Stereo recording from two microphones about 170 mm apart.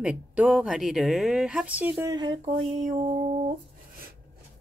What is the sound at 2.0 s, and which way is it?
Speech, 25° right (ahead or behind).